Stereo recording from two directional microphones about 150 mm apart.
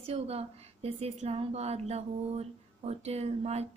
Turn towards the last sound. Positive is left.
turn(degrees=-45)  # may be behind; listen again after turning